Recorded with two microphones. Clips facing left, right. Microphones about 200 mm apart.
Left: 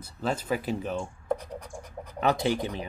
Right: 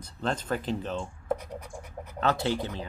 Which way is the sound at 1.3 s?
5° right (ahead or behind).